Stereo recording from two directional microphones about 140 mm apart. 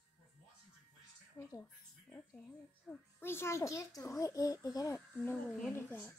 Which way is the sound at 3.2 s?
15° left (ahead or behind).